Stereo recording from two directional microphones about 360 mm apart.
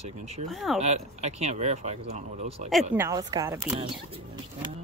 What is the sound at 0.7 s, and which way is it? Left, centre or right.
Speech, centre.